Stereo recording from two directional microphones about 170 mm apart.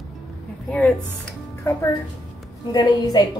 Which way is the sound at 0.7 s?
10° left (ahead or behind).